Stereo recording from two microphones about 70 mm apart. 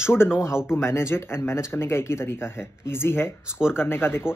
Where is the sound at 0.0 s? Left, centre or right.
Left.